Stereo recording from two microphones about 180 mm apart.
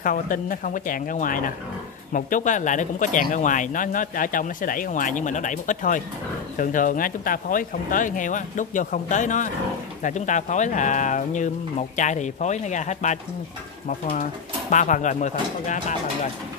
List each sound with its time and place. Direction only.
0.0 s speech: 50° left (ahead or behind)